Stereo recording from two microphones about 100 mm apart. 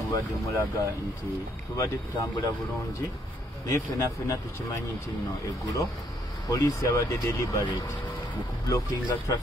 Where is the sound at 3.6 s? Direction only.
35° left (ahead or behind).